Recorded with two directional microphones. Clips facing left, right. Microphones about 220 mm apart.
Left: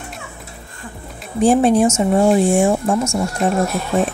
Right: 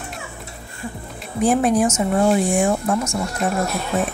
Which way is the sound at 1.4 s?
30° left (ahead or behind).